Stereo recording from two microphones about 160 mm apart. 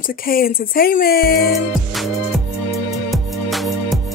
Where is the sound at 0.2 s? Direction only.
65° left (ahead or behind).